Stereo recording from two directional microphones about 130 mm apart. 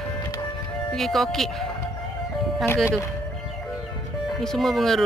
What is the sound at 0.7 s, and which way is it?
Speech, centre (ahead or behind).